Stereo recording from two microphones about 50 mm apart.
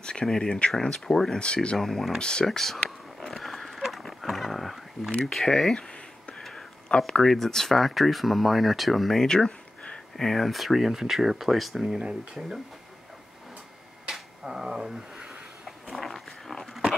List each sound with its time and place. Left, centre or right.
0.0 s speech: centre
1.4 s speech: left
1.8 s speech: centre
2.1 s speech: centre
2.4 s a sound: centre
5.2 s speech: centre
6.9 s speech: centre
7.2 s speech: centre
14.1 s a sound: centre
15.6 s a sound: centre